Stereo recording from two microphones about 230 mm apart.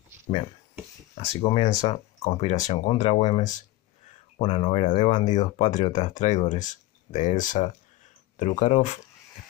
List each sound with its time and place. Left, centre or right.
1.1 s speech: left